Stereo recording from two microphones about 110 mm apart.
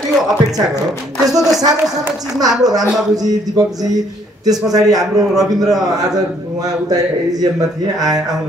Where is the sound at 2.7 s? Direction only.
35° right (ahead or behind).